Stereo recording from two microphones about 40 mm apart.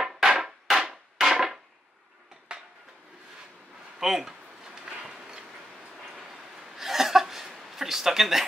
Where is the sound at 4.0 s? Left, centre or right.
Centre.